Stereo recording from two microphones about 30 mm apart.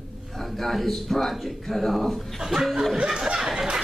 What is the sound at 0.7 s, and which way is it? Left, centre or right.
A woman's voice, centre.